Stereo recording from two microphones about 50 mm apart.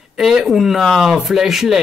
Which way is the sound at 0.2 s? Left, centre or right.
Centre.